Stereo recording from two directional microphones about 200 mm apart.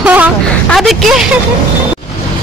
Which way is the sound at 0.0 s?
5° right (ahead or behind).